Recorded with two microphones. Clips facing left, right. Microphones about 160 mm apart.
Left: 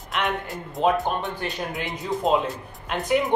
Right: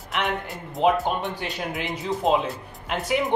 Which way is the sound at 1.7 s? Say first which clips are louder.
Even; centre (ahead or behind).